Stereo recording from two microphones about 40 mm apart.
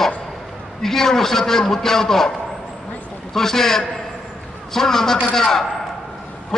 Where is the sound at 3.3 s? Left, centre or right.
Centre.